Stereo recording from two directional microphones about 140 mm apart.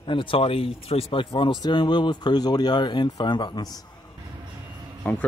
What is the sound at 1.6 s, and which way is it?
Speech, 30° left (ahead or behind).